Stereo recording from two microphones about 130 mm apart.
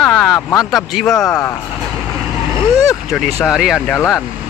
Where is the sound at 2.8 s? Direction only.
25° left (ahead or behind).